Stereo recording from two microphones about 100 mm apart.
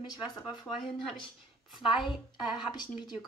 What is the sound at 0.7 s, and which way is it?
Speech, 5° left (ahead or behind).